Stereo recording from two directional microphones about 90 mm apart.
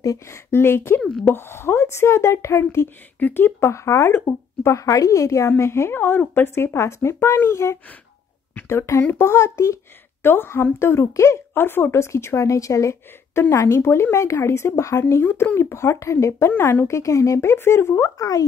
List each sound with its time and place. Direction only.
0.0 s speech: 35° left (ahead or behind)
1.0 s a woman's voice: centre (ahead or behind)
1.3 s a woman's voice: 30° left (ahead or behind)